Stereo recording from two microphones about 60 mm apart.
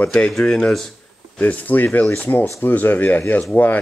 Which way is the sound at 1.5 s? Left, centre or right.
Left.